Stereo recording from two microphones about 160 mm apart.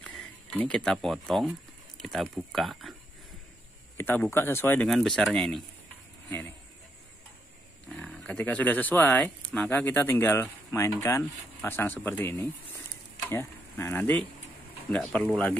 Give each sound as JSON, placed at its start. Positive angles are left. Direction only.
{"t": 0.0, "sound": "speech", "side_deg": 5}
{"t": 3.9, "sound": "speech", "side_deg": 10}
{"t": 4.8, "sound": "speech", "side_deg": 0}
{"t": 7.9, "sound": "speech", "side_deg": 10}